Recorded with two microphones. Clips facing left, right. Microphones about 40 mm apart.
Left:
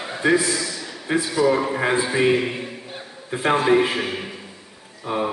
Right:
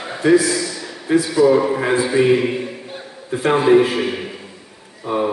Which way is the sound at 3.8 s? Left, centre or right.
Centre.